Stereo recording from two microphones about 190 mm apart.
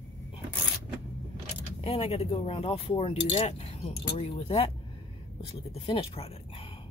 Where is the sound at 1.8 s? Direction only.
30° left (ahead or behind).